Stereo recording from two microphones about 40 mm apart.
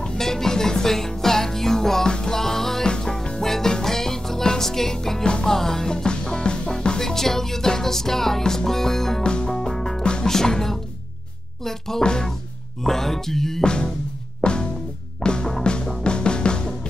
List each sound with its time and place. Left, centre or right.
0.0 s music: centre
5.2 s music: left
5.5 s music: centre
9.2 s music: left
9.5 s music: centre
12.0 s speech: centre
12.8 s music: centre
13.7 s speech: left
14.4 s music: left